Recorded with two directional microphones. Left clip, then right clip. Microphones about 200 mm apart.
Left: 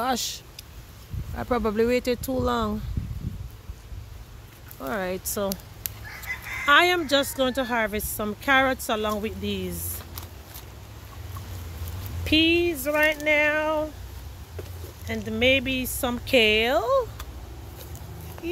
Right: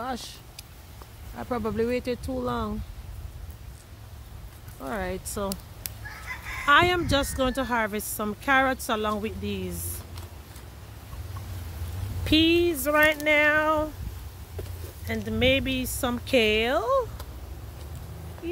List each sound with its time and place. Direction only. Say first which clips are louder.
0.0 s speech: left 7 dB; 25° left (ahead or behind)
4.7 s fowl: left 3 dB; 10° left (ahead or behind)
6.3 s fowl: left 5 dB; 40° right (ahead or behind)
6.6 s speech: left 1 dB; centre (ahead or behind)
12.3 s a sound: left 1 dB; 10° right (ahead or behind)
15.0 s speech: left 2 dB; 5° right (ahead or behind)